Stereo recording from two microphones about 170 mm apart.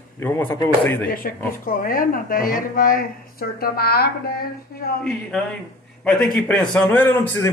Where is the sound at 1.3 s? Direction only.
55° left (ahead or behind).